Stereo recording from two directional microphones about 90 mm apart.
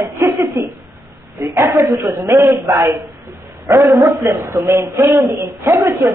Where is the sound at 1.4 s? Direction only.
30° right (ahead or behind).